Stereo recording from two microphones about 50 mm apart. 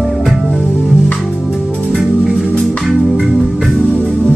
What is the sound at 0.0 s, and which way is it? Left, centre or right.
Music, centre.